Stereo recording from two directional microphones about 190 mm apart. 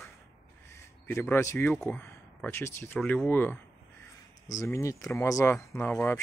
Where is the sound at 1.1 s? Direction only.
15° left (ahead or behind).